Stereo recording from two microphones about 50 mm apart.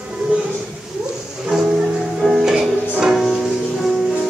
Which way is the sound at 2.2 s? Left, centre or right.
Centre.